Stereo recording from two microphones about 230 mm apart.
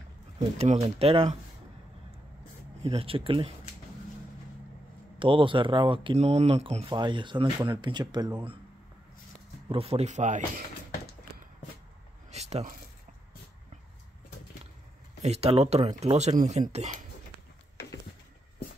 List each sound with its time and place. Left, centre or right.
0.7 s speech: right
2.8 s speech: right
5.2 s speech: right
9.7 s speech: right
12.3 s a sound: right
15.2 s speech: right